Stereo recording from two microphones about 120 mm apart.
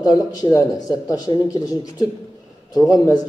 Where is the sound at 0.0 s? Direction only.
35° left (ahead or behind).